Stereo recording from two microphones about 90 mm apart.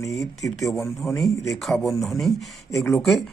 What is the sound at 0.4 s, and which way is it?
A man's voice, centre (ahead or behind).